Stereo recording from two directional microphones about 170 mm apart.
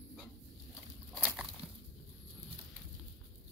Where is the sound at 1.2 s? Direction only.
5° right (ahead or behind).